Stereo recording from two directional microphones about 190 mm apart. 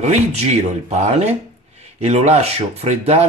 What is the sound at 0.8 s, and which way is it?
Speech, 35° right (ahead or behind).